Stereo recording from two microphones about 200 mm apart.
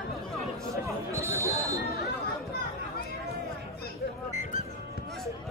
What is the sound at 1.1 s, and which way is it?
Basketball bounce, 15° right (ahead or behind).